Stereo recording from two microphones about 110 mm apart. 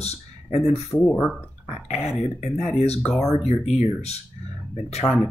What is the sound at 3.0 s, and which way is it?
Speech, 5° left (ahead or behind).